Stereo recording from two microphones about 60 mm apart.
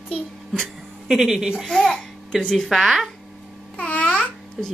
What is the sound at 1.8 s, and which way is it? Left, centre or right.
Speech, centre.